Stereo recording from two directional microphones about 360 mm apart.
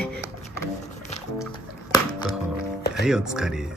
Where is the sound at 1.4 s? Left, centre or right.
Centre.